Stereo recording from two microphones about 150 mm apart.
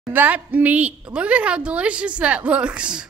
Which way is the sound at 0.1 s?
10° right (ahead or behind).